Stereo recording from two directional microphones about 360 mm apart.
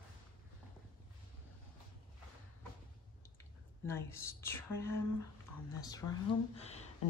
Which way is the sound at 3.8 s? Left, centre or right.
Centre.